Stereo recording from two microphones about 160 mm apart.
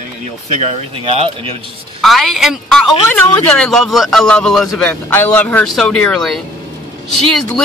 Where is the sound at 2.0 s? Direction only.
Centre (ahead or behind).